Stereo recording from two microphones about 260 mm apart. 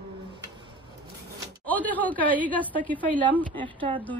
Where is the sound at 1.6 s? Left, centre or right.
Centre.